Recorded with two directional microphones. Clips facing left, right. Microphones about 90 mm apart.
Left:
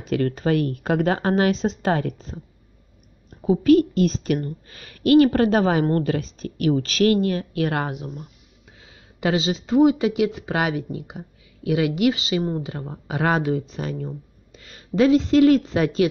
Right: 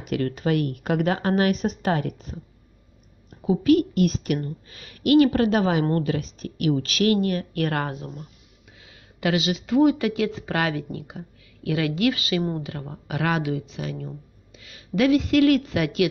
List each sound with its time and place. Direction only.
0.0 s a woman's voice: 35° left (ahead or behind)
3.4 s a woman's voice: 35° left (ahead or behind); by 8.3 s 20° left (ahead or behind)
8.8 s a sound: 30° left (ahead or behind)
9.8 s speech: 20° left (ahead or behind)